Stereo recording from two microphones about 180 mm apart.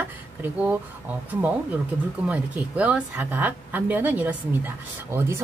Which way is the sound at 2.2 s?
5° right (ahead or behind).